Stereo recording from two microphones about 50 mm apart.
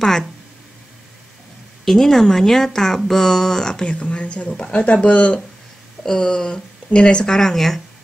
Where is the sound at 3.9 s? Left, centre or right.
Left.